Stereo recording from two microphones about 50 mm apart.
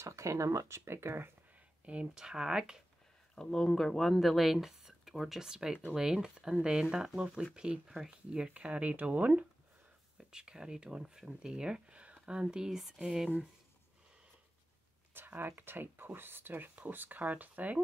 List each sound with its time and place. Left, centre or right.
0.0 s speech: right
2.1 s speech: centre
3.3 s speech: centre
5.4 s speech: centre
10.1 s speech: centre
15.1 s speech: right
16.7 s speech: right